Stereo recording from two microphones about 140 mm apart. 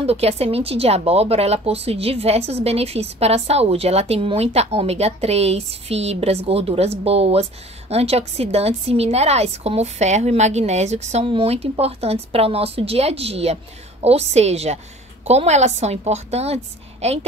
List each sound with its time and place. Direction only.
0.0 s speech: 45° right (ahead or behind)